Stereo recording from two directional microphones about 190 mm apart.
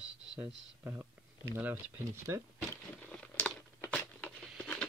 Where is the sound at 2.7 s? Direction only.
5° left (ahead or behind).